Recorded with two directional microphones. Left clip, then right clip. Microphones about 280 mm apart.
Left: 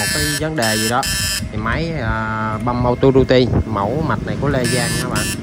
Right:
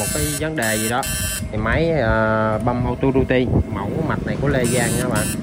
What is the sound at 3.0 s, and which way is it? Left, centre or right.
Speech, right.